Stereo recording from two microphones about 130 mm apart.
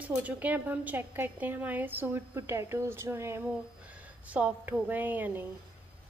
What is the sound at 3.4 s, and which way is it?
Speech, 10° right (ahead or behind).